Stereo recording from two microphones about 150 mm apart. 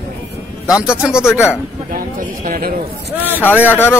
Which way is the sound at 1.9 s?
70° right (ahead or behind).